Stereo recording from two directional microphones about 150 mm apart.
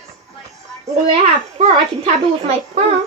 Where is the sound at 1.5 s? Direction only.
45° right (ahead or behind).